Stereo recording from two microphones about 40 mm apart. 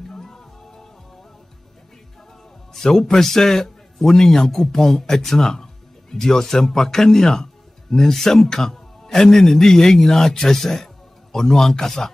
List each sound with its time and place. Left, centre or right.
0.1 s music: centre
2.7 s a man's voice: centre